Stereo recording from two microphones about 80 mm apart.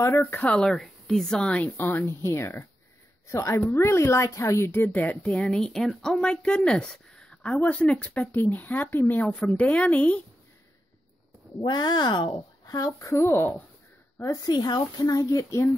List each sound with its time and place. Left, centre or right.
0.0 s speech: left
0.5 s a woman's voice: centre
1.6 s a woman's voice: left
11.6 s speech: left
12.6 s speech: left
13.3 s speech: left
14.3 s speech: left